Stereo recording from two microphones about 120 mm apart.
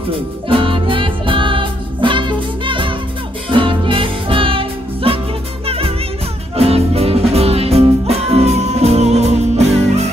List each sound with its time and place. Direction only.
0.5 s music: 45° right (ahead or behind); by 10.0 s 65° right (ahead or behind)